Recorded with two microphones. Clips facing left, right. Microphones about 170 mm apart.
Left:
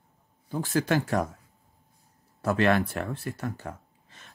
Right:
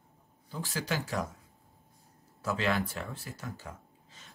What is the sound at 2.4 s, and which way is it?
Speech, 60° left (ahead or behind).